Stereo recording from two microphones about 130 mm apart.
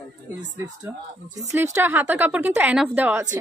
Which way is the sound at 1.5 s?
20° right (ahead or behind).